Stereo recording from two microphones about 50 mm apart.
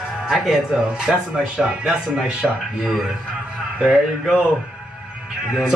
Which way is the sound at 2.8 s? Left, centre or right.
Centre.